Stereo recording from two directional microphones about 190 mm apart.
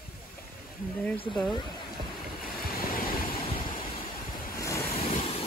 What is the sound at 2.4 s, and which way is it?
Vehicle, 50° left (ahead or behind).